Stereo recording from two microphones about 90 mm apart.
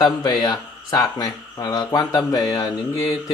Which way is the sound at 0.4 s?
45° left (ahead or behind).